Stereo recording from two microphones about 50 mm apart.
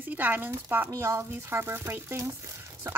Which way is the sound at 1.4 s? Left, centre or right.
Right.